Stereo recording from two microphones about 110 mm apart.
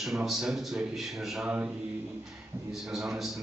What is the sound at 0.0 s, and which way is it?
A man's voice, 5° right (ahead or behind).